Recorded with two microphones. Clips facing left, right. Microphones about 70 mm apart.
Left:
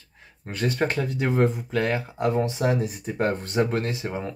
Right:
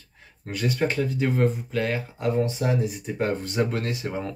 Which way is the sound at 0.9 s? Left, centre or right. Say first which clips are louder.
Even; left.